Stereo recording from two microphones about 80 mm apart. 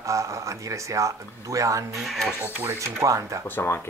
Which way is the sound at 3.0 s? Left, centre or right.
Right.